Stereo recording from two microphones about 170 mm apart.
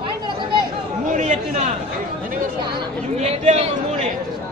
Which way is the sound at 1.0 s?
45° right (ahead or behind).